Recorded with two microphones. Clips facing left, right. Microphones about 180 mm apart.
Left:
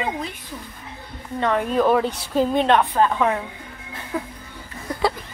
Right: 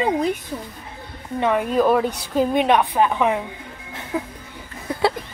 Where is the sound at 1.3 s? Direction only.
10° right (ahead or behind).